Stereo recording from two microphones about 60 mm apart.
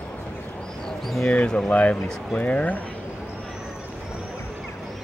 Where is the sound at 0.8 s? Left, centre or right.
Centre.